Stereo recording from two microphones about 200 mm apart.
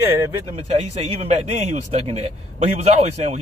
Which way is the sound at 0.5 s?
30° right (ahead or behind).